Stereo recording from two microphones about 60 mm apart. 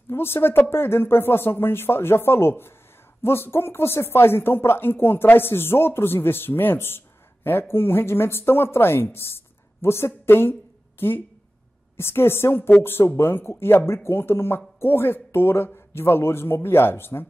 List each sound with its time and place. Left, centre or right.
0.1 s speech: left